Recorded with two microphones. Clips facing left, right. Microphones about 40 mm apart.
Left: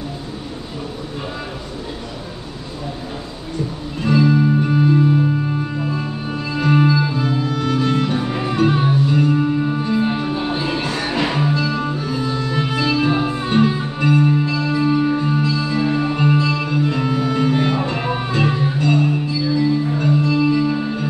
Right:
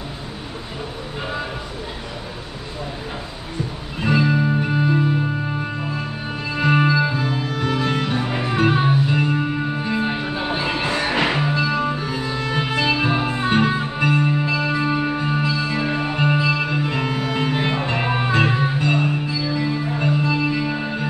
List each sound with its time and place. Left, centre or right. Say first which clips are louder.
4.0 s music: left 3 dB; centre